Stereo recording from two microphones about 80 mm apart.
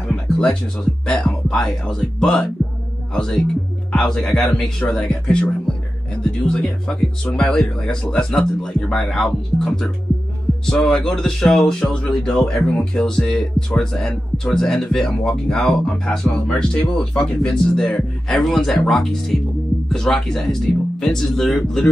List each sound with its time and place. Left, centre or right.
0.1 s music: centre
1.0 s speech: centre
5.0 s speech: centre